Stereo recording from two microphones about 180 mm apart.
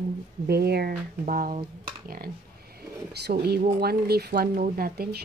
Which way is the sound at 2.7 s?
60° right (ahead or behind).